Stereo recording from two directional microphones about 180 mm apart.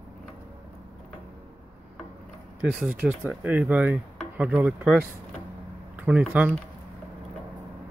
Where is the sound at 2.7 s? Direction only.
5° right (ahead or behind).